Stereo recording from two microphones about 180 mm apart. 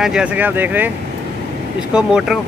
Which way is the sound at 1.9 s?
5° right (ahead or behind).